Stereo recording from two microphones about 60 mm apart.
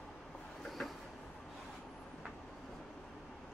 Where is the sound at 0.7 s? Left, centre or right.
Centre.